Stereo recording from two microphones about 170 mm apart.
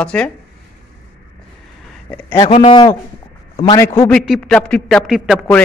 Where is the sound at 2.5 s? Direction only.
30° left (ahead or behind).